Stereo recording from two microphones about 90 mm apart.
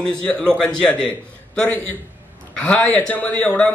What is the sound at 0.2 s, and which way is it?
A man's voice, 15° left (ahead or behind).